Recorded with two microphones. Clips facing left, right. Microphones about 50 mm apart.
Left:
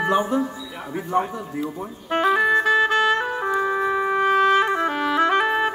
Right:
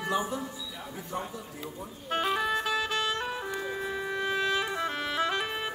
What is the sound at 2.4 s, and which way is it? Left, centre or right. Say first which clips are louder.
Music: left 11 dB; left.